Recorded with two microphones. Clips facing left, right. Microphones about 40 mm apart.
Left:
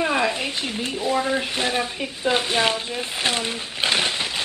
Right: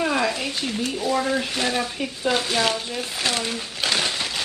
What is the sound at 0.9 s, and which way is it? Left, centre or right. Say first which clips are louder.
Speech: left 1 dB; centre.